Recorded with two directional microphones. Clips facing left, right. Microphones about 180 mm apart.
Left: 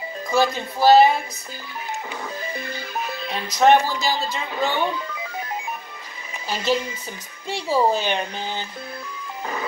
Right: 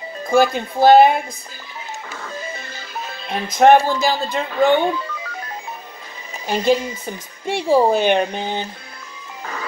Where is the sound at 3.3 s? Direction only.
50° right (ahead or behind).